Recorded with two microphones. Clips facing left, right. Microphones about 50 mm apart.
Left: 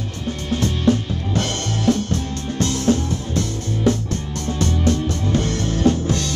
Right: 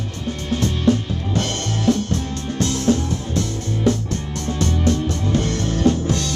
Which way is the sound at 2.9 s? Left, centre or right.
Left.